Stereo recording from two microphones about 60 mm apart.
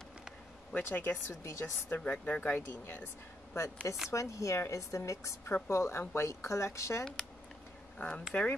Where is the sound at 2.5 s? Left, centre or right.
Left.